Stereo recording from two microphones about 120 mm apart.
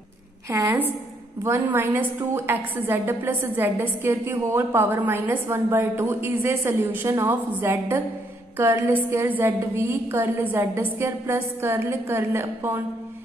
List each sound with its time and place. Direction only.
0.5 s a woman's voice: 25° right (ahead or behind)